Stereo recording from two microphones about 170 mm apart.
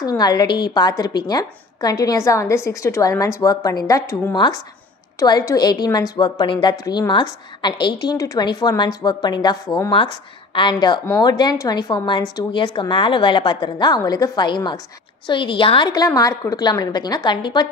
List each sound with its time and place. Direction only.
0.0 s a woman's voice: 20° left (ahead or behind)